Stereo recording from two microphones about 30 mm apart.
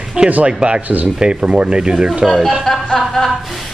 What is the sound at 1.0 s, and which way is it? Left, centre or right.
Speech, right.